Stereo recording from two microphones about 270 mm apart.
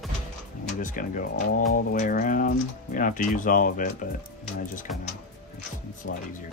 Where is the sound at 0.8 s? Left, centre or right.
Left.